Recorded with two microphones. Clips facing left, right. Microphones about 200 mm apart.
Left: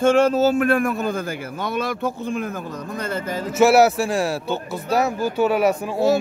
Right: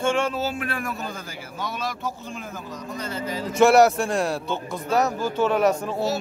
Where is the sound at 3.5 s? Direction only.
5° left (ahead or behind).